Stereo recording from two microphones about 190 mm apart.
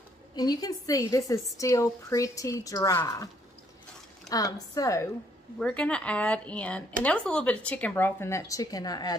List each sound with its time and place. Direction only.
0.4 s speech: 20° left (ahead or behind)
4.3 s a woman's voice: 20° left (ahead or behind)
5.6 s speech: 5° left (ahead or behind); by 9.1 s 20° left (ahead or behind)